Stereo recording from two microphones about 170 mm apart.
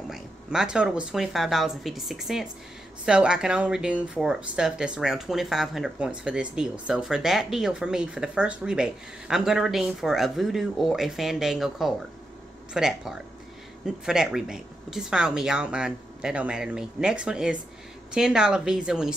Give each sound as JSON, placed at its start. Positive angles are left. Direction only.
{"t": 0.1, "sound": "speech", "side_deg": -5}